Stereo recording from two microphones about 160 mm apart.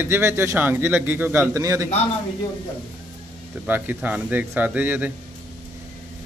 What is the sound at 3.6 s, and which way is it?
Speech, 10° right (ahead or behind).